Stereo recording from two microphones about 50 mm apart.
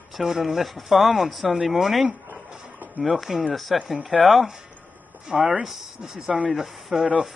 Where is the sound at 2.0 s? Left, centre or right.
Right.